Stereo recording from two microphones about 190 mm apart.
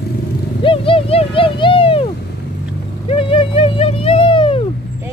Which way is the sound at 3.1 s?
30° left (ahead or behind).